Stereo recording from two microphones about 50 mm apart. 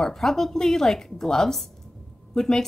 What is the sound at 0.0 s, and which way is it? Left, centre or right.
A woman's voice, centre.